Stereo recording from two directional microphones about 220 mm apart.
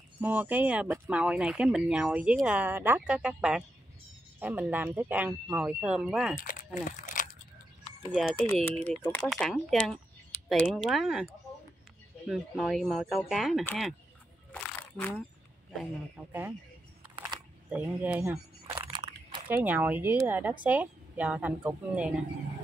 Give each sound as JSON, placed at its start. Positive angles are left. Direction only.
{"t": 0.2, "sound": "speech", "side_deg": -5}
{"t": 6.4, "sound": "crumpling", "side_deg": 35}
{"t": 8.1, "sound": "speech", "side_deg": 0}
{"t": 12.3, "sound": "speech", "side_deg": 0}
{"t": 14.5, "sound": "a sound", "side_deg": 10}
{"t": 15.7, "sound": "speech", "side_deg": 0}
{"t": 17.6, "sound": "a sound", "side_deg": -5}
{"t": 19.5, "sound": "speech", "side_deg": -10}